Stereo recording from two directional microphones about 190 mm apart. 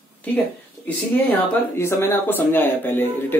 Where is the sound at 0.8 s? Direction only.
10° left (ahead or behind).